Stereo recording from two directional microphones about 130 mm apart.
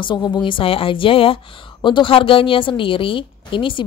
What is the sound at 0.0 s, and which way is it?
Speech, 35° left (ahead or behind).